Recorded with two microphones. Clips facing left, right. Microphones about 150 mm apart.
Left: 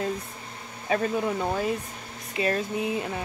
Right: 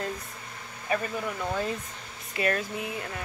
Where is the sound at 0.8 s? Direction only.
25° left (ahead or behind).